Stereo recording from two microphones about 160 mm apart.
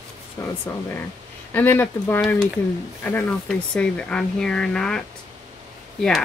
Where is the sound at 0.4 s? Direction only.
20° left (ahead or behind); by 5.0 s 5° left (ahead or behind).